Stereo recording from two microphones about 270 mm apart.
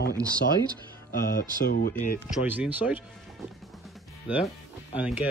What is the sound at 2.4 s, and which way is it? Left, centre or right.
Speech, centre.